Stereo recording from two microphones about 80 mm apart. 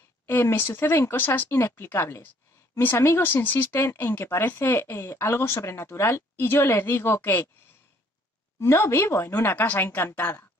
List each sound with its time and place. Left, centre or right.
0.3 s speech: left
8.5 s speech: left